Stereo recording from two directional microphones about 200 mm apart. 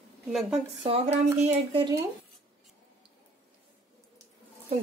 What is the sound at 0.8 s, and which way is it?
Speech, 30° right (ahead or behind).